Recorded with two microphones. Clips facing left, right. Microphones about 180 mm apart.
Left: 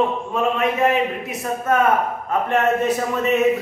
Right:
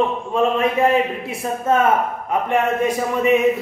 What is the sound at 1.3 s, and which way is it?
Speech, 30° right (ahead or behind).